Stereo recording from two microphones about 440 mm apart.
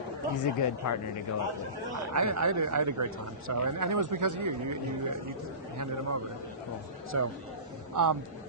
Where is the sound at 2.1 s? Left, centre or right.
Right.